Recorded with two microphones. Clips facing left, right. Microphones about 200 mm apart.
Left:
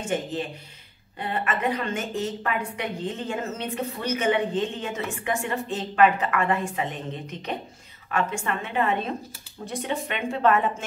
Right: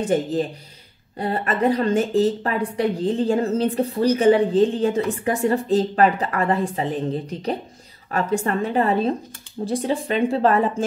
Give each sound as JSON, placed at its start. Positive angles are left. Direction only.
{"t": 0.0, "sound": "a woman's voice", "side_deg": -40}